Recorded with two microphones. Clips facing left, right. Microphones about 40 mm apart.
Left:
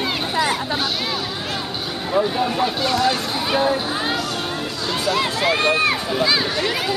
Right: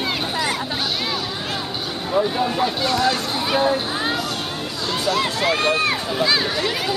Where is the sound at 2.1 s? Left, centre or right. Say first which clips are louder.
Even; centre; by 5.9 s left.